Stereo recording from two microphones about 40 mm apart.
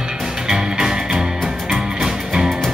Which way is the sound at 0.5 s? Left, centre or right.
Centre.